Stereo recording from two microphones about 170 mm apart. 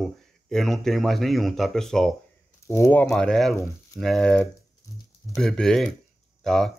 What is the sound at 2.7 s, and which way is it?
Speech, 15° left (ahead or behind).